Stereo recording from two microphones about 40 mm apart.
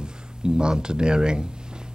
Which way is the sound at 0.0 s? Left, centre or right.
Right.